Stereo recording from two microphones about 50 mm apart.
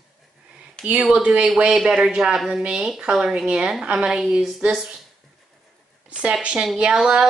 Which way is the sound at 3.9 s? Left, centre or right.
Right.